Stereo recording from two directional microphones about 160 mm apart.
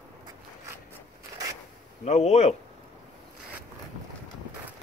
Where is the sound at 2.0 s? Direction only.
40° left (ahead or behind).